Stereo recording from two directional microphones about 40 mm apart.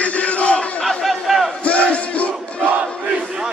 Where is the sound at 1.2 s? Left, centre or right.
Centre.